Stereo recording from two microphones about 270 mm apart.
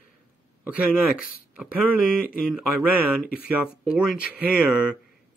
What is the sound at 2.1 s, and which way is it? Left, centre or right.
Speech, centre.